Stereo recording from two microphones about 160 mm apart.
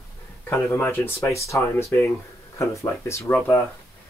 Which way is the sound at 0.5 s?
15° left (ahead or behind).